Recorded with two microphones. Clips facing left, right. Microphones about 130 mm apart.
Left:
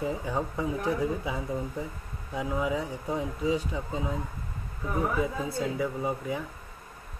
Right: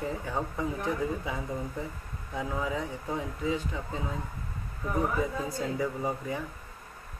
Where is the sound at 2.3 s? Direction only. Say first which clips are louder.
Left 3 dB; 15° left (ahead or behind).